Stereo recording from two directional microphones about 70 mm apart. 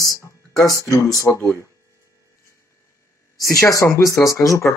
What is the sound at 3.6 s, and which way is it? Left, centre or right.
Speech, left.